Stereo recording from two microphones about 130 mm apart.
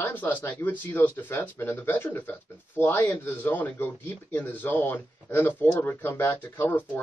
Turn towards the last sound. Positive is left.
turn(degrees=15)  # may be behind; listen again after turning